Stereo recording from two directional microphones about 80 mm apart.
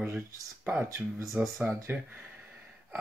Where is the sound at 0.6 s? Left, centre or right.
Right.